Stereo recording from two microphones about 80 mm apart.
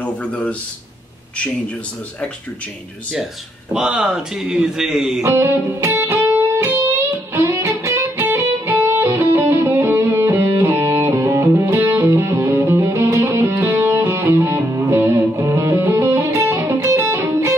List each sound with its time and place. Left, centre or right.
0.0 s a man's voice: centre
3.7 s speech: centre
5.2 s music: right
6.7 s music: right
12.3 s music: right
13.5 s music: right
15.3 s music: right